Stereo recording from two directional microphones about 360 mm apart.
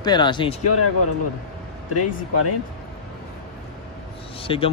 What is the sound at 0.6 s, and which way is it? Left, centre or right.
Speech, left.